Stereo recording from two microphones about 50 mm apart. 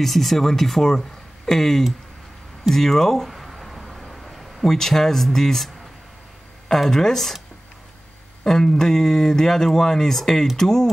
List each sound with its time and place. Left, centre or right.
0.0 s speech: centre
3.3 s a sound: centre
4.6 s speech: centre
6.7 s speech: centre
8.5 s speech: centre